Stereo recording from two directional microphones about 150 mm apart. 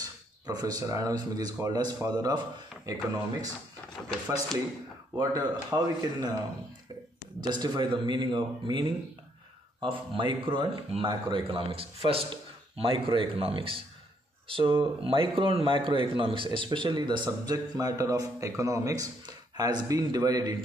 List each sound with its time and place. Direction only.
0.5 s a man's voice: 25° right (ahead or behind)
5.3 s a man's voice: 25° right (ahead or behind)
7.4 s a man's voice: 30° right (ahead or behind)